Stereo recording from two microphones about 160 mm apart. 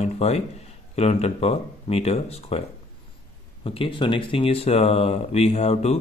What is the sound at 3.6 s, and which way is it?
Speech, 35° left (ahead or behind).